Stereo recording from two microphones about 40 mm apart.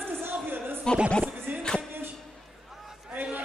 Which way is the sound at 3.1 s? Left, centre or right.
Right.